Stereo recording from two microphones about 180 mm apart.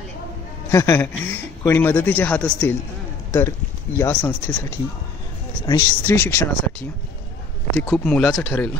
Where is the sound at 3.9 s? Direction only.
10° left (ahead or behind).